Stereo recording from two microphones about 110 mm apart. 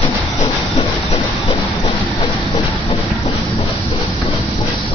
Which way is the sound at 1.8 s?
75° left (ahead or behind).